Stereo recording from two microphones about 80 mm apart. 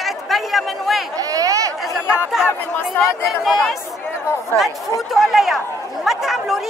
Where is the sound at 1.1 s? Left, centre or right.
Right.